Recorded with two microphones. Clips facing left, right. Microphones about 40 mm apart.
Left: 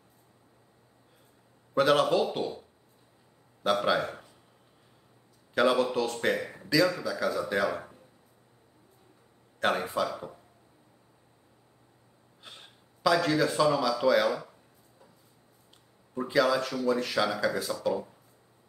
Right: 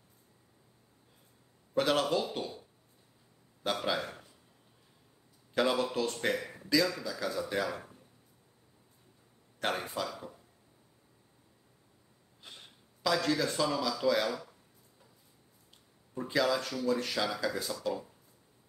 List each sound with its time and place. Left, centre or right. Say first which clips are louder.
1.8 s speech: left 5 dB; centre
3.6 s speech: left 7 dB; centre
5.5 s speech: left 5 dB; centre
6.3 s a sound: left 4 dB; centre
6.7 s speech: left 4 dB; centre
9.6 s speech: left 6 dB; centre
12.4 s a sound: left 2 dB; centre
14.0 s speech: left 5 dB; centre
16.3 s speech: left 4 dB; centre